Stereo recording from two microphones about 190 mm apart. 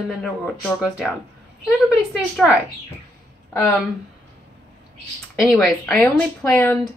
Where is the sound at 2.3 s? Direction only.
5° right (ahead or behind).